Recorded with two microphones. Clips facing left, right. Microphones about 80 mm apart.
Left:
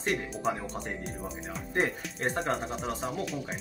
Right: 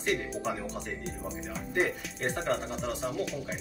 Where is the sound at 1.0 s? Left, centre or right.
Centre.